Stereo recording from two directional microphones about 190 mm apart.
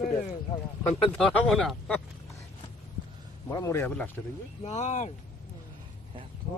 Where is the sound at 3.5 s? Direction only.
15° left (ahead or behind).